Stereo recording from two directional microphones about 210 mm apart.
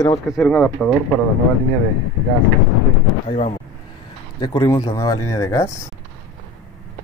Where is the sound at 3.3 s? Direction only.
30° left (ahead or behind).